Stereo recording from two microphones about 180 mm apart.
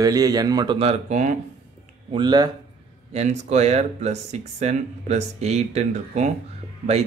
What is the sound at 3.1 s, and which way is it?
Speech, 40° right (ahead or behind).